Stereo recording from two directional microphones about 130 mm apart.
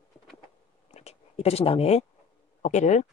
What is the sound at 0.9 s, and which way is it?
Whispering, 55° left (ahead or behind).